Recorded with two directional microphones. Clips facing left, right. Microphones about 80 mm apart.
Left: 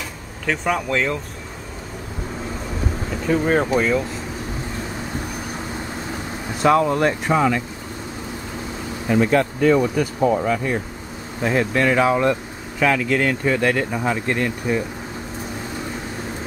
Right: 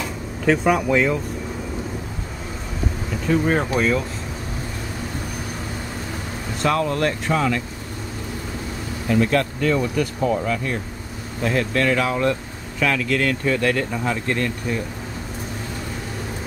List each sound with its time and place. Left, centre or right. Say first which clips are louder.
0.5 s speech: right 4 dB; centre
3.3 s speech: left 1 dB; centre
6.6 s speech: left 4 dB; centre
9.0 s speech: left 2 dB; left